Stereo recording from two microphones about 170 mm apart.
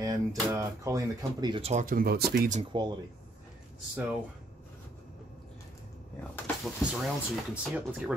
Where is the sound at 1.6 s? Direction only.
45° right (ahead or behind); by 2.5 s 65° right (ahead or behind).